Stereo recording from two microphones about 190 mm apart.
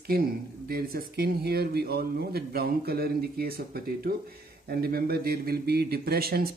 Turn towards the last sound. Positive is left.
turn(degrees=-55)  # may be behind; listen again after turning